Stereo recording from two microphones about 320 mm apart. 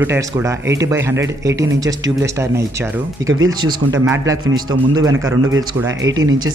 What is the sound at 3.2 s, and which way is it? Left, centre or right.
Speech, right.